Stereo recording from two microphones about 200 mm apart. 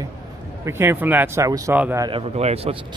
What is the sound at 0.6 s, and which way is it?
A man's voice, 10° right (ahead or behind).